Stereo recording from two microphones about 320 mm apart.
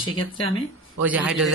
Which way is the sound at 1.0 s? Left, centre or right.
Centre.